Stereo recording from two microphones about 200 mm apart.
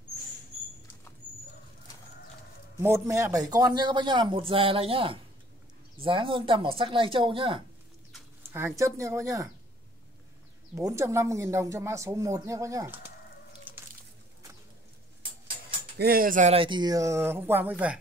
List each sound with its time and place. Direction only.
2.8 s a man's voice: 15° right (ahead or behind)
8.5 s speech: 15° right (ahead or behind)
10.7 s speech: 15° right (ahead or behind)
16.0 s speech: 45° right (ahead or behind); by 17.9 s 10° right (ahead or behind)